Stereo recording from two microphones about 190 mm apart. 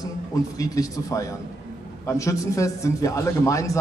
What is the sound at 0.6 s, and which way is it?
A man's voice, 15° left (ahead or behind).